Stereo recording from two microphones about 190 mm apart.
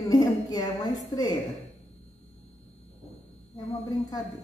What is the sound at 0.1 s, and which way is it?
A woman's voice, 20° left (ahead or behind).